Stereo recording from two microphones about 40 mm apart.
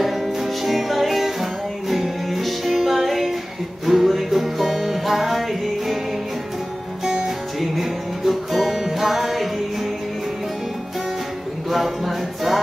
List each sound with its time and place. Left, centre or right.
0.0 s music: centre
7.1 s music: centre
8.3 s music: centre
11.7 s music: centre